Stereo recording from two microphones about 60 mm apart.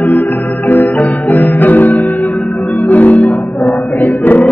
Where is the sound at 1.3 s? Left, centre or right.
Left.